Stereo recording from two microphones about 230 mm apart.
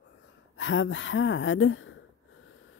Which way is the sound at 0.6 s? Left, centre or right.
Left.